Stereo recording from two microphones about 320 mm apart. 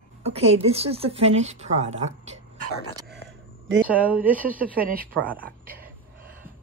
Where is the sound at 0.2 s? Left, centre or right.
Centre.